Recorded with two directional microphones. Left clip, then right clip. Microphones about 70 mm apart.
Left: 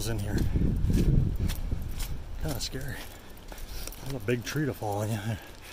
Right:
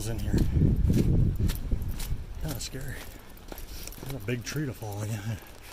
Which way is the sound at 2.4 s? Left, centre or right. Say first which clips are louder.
Left 3 dB; left.